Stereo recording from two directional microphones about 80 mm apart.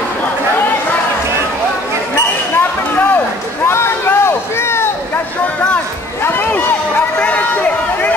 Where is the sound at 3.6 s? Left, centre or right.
Left.